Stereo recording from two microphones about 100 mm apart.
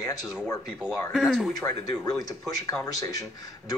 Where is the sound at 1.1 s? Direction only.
Centre (ahead or behind).